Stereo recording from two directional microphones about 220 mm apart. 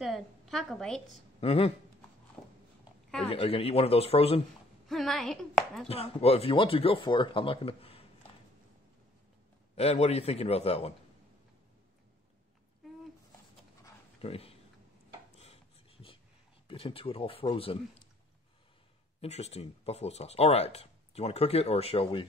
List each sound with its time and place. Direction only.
0.0 s a woman's voice: centre (ahead or behind)
1.0 s speech: 25° left (ahead or behind)
3.3 s speech: 25° left (ahead or behind)
4.8 s chopping: centre (ahead or behind)
5.9 s speech: 25° left (ahead or behind)
9.8 s speech: 30° left (ahead or behind)
14.2 s speech: 25° left (ahead or behind)
15.3 s a sound: 30° left (ahead or behind)
16.6 s speech: 25° left (ahead or behind)
19.2 s speech: 30° left (ahead or behind)